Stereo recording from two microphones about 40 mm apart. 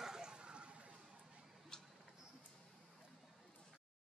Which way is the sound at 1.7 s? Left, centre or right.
Centre.